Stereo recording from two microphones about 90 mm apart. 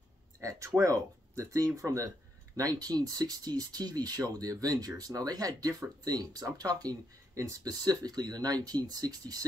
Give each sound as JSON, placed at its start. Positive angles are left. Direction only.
{"t": 0.4, "sound": "speech", "side_deg": -35}